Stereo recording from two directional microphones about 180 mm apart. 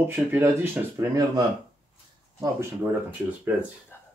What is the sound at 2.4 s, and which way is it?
Speech, 15° right (ahead or behind).